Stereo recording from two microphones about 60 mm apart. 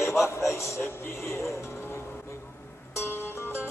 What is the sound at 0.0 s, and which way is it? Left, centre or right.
Speech, left.